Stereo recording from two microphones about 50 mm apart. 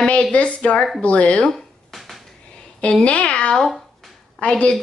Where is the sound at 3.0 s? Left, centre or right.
Left.